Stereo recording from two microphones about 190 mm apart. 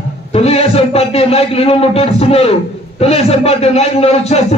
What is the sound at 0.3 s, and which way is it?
A man's voice, 30° left (ahead or behind).